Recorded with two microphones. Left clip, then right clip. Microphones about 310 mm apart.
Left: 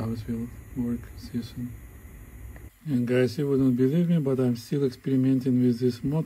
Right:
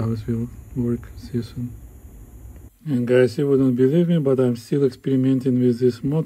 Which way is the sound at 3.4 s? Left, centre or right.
Right.